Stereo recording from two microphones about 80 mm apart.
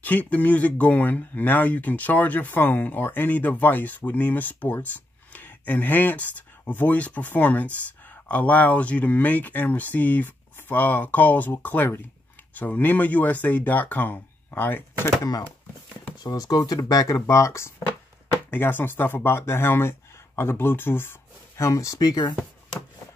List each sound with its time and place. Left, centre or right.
0.0 s speech: centre
16.2 s speech: left
18.5 s speech: left
21.6 s speech: left